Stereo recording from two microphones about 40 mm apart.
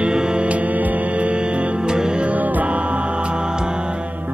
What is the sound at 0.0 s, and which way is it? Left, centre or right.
Music, right.